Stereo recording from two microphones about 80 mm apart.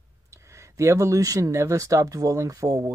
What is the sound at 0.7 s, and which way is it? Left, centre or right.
Speech, right.